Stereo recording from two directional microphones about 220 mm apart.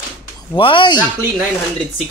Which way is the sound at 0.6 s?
25° left (ahead or behind).